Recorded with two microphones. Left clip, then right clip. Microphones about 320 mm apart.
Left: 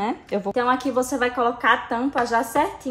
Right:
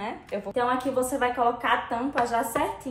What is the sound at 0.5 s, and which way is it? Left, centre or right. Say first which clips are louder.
A woman's voice: left 3 dB; left.